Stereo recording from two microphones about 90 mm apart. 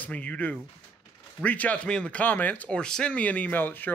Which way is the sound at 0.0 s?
15° left (ahead or behind).